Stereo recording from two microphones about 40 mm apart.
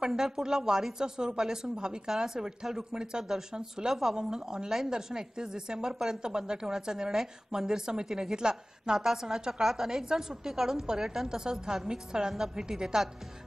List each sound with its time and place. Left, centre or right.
0.0 s a woman's voice: centre